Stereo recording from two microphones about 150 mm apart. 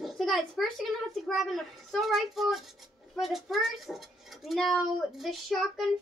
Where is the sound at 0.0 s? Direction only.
Centre (ahead or behind).